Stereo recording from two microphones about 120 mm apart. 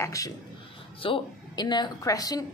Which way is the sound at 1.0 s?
45° left (ahead or behind).